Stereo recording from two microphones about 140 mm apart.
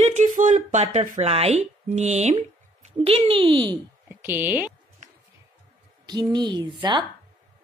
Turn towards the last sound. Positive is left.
turn(degrees=-30)  # may be behind; listen again after turning